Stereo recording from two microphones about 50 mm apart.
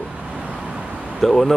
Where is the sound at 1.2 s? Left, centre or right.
Centre.